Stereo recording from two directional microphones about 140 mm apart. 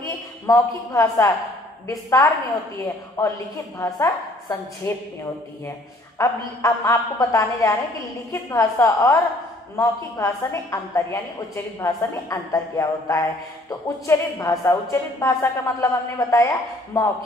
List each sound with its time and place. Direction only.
0.5 s a woman's voice: 25° left (ahead or behind)
3.7 s a woman's voice: 25° left (ahead or behind)
6.1 s a woman's voice: 20° left (ahead or behind)